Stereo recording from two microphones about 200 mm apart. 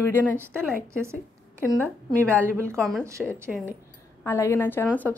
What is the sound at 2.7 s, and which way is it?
Speech, centre (ahead or behind).